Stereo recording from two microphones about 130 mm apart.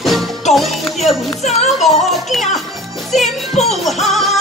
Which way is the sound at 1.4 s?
60° left (ahead or behind).